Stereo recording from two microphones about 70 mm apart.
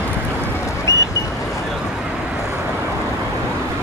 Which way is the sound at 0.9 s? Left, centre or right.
Left.